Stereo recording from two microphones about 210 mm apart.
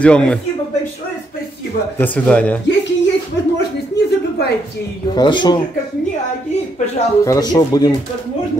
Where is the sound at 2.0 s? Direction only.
5° left (ahead or behind).